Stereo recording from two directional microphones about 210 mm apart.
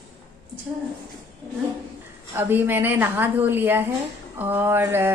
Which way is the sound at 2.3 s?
10° right (ahead or behind).